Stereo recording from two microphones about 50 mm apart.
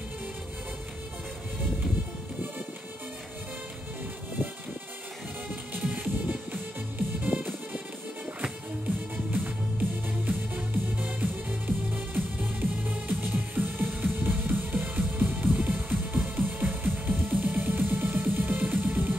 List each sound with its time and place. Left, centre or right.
5.8 s music: right
9.1 s music: right